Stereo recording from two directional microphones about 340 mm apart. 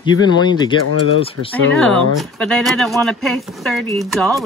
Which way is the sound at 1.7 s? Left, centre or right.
Centre.